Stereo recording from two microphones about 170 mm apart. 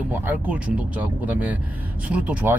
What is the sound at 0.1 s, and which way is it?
Speech, 10° right (ahead or behind).